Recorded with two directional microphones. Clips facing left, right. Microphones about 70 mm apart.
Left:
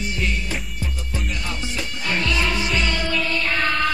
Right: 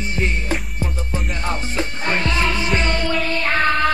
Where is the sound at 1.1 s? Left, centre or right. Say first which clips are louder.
Right 3 dB; right.